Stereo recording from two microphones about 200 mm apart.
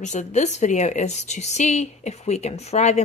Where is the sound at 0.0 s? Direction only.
35° left (ahead or behind).